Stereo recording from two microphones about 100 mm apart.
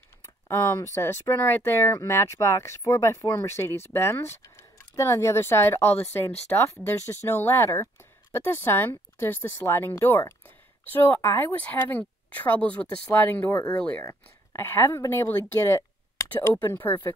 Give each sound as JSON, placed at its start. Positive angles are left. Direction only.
{"t": 0.5, "sound": "speech", "side_deg": 20}
{"t": 14.0, "sound": "speech", "side_deg": 25}